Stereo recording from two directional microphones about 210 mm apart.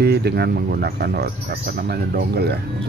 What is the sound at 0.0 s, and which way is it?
Speech, 50° right (ahead or behind).